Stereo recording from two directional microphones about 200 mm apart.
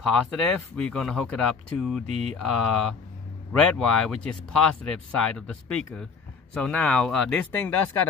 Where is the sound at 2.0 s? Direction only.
30° right (ahead or behind).